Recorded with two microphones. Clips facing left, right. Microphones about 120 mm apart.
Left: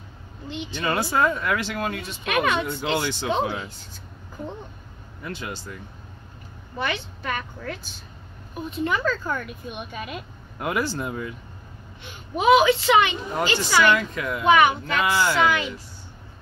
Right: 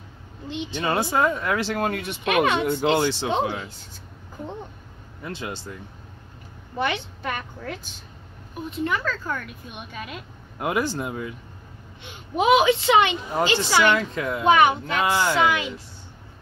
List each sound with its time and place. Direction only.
0.5 s a woman's voice: 25° right (ahead or behind)
1.8 s speech: 55° right (ahead or behind)
2.2 s a woman's voice: 25° right (ahead or behind)
2.6 s speech: 50° right (ahead or behind)
3.0 s a woman's voice: 30° right (ahead or behind)
5.2 s a woman's voice: 25° right (ahead or behind)
6.8 s a woman's voice: 20° right (ahead or behind)
8.6 s a woman's voice: 20° left (ahead or behind)
10.6 s a woman's voice: 20° right (ahead or behind)